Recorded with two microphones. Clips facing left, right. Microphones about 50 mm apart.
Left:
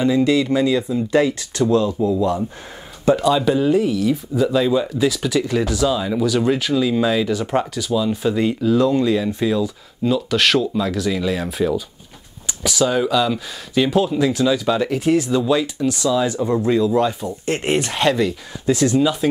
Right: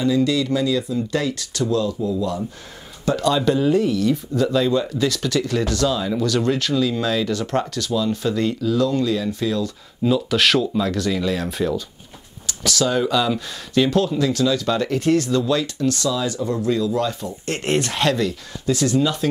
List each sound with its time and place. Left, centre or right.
0.0 s speech: left
3.1 s speech: centre
8.5 s speech: left
10.0 s speech: centre; by 19.0 s left